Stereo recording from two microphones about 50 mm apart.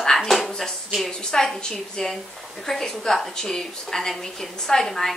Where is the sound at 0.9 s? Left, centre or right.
Centre.